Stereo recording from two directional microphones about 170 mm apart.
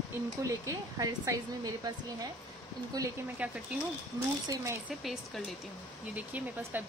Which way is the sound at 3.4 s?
10° right (ahead or behind).